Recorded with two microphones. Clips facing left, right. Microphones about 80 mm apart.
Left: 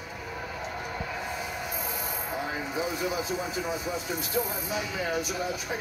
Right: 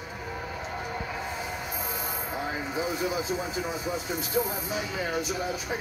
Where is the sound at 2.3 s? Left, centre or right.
Right.